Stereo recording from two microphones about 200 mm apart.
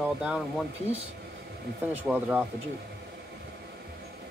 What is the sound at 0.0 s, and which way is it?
Speech, centre (ahead or behind).